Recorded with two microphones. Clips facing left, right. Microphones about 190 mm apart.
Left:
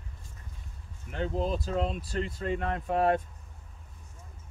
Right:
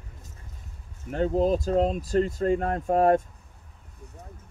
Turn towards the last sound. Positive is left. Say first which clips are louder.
# right 5 dB
turn(degrees=-45)  # may be behind; listen again after turning